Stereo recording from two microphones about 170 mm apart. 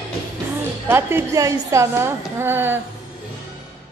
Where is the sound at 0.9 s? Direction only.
15° right (ahead or behind).